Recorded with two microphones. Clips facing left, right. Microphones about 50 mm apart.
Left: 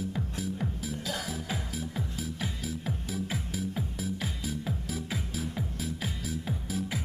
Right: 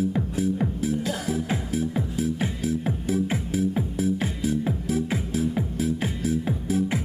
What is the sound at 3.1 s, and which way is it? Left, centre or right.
Music, centre.